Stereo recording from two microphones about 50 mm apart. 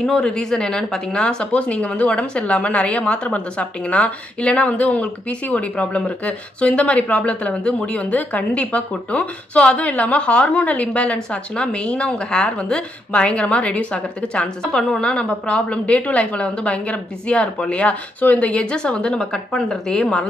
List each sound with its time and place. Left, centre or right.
0.0 s a woman's voice: centre